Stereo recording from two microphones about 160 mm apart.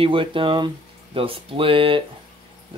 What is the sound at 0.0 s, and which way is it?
Speech, 35° right (ahead or behind).